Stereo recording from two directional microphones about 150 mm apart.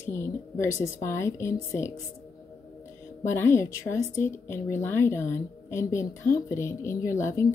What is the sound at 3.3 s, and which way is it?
A woman's voice, 15° left (ahead or behind).